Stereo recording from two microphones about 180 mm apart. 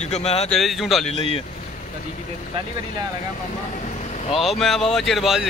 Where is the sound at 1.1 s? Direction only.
30° left (ahead or behind).